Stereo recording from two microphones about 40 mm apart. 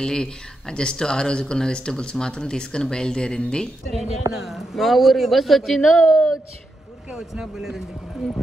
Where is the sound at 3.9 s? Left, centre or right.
Centre.